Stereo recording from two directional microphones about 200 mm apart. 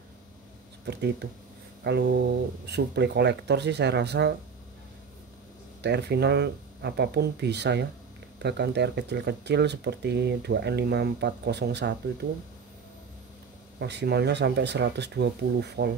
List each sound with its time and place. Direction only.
0.8 s speech: 55° right (ahead or behind)
5.8 s speech: 55° right (ahead or behind)
13.7 s speech: 55° right (ahead or behind)